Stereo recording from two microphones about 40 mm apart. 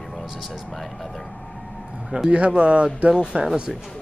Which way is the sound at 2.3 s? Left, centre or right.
Right.